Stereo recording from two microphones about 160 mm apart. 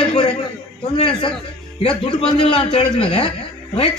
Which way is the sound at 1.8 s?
35° left (ahead or behind).